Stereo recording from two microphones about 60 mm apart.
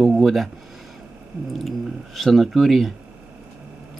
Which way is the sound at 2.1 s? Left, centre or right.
Centre.